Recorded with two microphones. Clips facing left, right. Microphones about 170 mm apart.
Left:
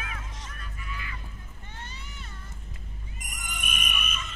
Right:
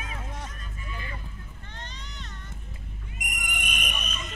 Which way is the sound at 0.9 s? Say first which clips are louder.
Right 4 dB; 35° right (ahead or behind).